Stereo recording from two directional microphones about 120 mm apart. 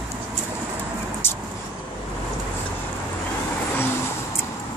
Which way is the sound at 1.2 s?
20° left (ahead or behind).